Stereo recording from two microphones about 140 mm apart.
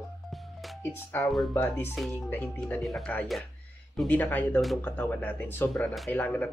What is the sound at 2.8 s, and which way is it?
Speech, centre (ahead or behind).